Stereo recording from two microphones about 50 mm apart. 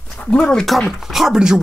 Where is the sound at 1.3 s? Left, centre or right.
Centre.